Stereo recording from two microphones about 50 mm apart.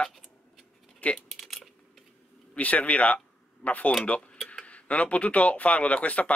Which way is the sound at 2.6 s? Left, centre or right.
Left.